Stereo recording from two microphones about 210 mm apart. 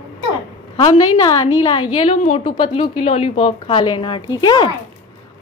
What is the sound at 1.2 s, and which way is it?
A woman's voice, 20° left (ahead or behind).